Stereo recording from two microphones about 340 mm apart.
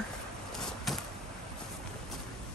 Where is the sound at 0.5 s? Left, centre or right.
Centre.